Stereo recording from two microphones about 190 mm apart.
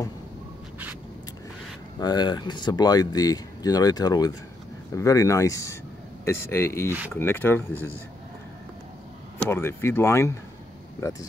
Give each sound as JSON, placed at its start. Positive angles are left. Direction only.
{"t": 2.0, "sound": "speech", "side_deg": 20}
{"t": 9.4, "sound": "speech", "side_deg": 10}